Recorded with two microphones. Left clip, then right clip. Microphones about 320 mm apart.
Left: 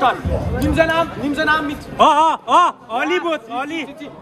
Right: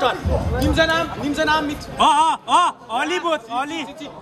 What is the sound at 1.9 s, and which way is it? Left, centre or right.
Speech, centre.